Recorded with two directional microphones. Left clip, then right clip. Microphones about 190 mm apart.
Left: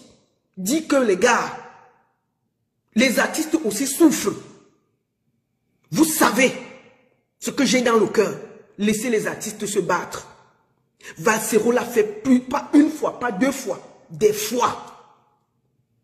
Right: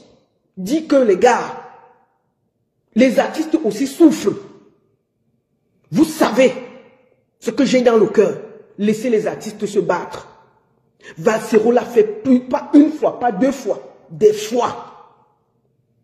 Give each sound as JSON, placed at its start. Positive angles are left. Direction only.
{"t": 0.7, "sound": "a man's voice", "side_deg": 20}
{"t": 3.0, "sound": "a man's voice", "side_deg": 15}
{"t": 5.9, "sound": "a man's voice", "side_deg": 15}